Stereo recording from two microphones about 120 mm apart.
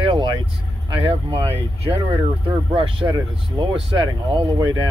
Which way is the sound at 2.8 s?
40° right (ahead or behind).